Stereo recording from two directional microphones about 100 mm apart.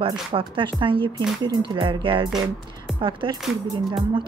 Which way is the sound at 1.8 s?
60° right (ahead or behind).